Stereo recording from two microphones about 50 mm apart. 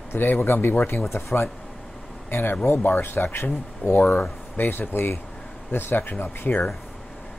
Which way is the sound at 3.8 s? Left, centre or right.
Left.